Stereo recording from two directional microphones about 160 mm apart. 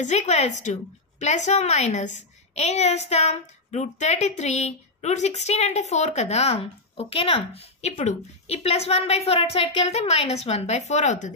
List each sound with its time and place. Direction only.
0.0 s a woman's voice: 45° left (ahead or behind)